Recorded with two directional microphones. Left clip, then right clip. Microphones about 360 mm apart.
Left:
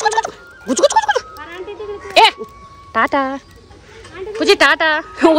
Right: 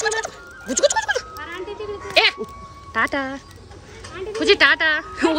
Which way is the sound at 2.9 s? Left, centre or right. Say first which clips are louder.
Left 6 dB; centre.